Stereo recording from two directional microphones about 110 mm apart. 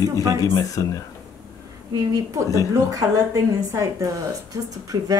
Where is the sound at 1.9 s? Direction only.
35° right (ahead or behind).